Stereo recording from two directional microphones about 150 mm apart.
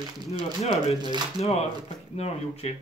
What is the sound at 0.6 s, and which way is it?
Speech, 45° left (ahead or behind).